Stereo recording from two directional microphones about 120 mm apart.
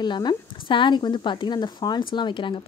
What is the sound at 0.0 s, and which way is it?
Speech, 35° left (ahead or behind).